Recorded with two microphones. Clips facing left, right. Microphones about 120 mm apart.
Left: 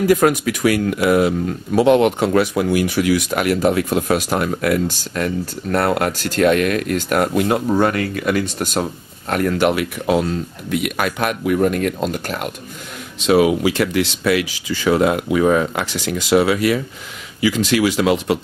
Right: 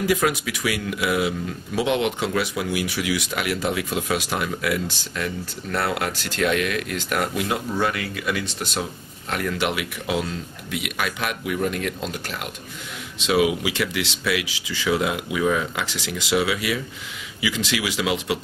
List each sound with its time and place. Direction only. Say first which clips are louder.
0.0 s speech: left 7 dB; 45° left (ahead or behind)